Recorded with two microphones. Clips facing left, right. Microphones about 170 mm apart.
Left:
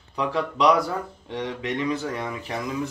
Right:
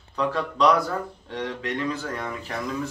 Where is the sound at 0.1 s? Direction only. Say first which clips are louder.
Even; 15° left (ahead or behind).